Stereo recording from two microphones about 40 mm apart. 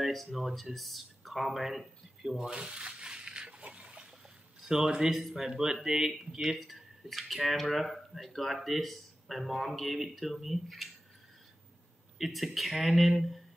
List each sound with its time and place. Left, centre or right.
0.0 s speech: centre
12.2 s speech: centre